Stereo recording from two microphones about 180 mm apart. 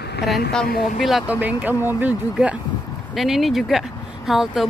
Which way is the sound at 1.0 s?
5° right (ahead or behind).